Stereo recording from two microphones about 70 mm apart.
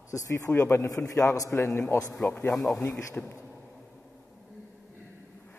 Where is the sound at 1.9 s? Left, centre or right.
Left.